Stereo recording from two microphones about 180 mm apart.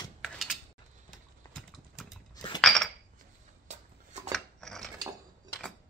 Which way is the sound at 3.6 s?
40° right (ahead or behind).